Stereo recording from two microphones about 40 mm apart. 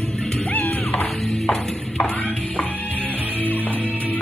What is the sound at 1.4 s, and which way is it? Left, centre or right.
Music, left.